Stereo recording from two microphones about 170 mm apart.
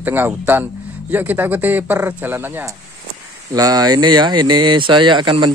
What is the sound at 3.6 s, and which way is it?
Speech, 20° right (ahead or behind).